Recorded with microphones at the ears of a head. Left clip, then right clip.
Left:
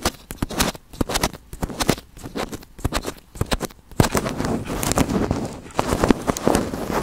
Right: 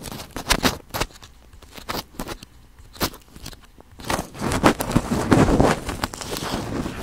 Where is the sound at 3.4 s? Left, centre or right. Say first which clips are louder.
Left 16 dB; left.